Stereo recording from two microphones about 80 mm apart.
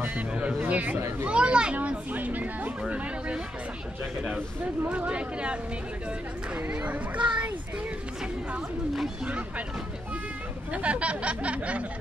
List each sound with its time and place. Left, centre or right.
0.3 s speech: centre
4.8 s speech: centre
8.9 s speech: centre
10.7 s speech: centre